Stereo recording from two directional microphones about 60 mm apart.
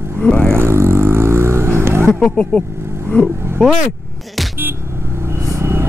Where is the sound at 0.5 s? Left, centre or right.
Right.